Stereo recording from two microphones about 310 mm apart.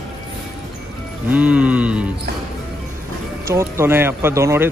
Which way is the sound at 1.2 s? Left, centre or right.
Centre.